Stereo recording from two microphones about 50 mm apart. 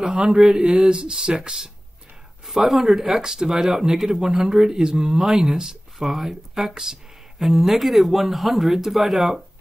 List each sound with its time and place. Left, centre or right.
0.0 s speech: centre